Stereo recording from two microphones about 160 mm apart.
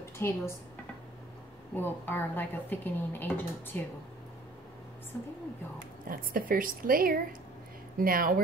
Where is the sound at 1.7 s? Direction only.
10° left (ahead or behind).